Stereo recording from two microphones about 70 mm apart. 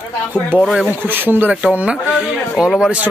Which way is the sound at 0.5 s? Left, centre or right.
Right.